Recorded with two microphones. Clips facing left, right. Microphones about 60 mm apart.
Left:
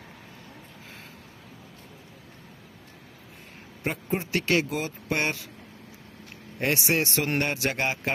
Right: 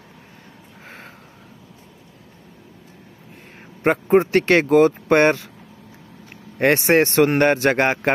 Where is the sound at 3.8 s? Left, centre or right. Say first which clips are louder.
Right 14 dB; right.